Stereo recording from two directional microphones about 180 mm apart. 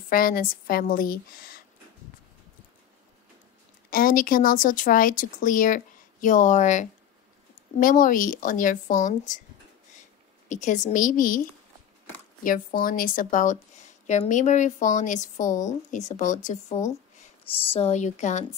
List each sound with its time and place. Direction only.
0.1 s speech: 50° left (ahead or behind)
3.9 s speech: 50° left (ahead or behind)
10.5 s speech: 40° left (ahead or behind)
12.4 s speech: 50° left (ahead or behind)